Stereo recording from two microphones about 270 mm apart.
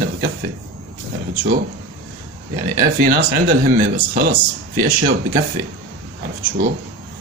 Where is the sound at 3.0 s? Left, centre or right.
Right.